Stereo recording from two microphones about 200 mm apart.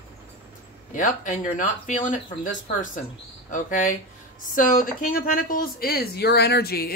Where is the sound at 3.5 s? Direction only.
40° left (ahead or behind).